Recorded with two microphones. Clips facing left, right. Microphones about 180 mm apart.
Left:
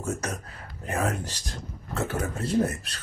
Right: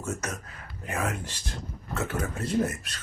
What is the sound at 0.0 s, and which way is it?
Speech, 35° left (ahead or behind).